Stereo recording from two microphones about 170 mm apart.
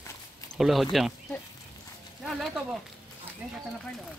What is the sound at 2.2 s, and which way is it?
Speech, centre (ahead or behind).